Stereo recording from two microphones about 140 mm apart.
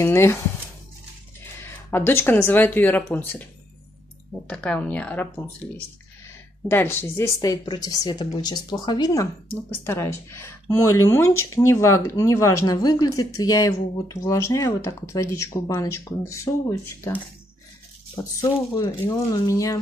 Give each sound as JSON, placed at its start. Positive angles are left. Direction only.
{"t": 0.0, "sound": "speech", "side_deg": 20}
{"t": 1.6, "sound": "speech", "side_deg": 15}
{"t": 6.7, "sound": "speech", "side_deg": 15}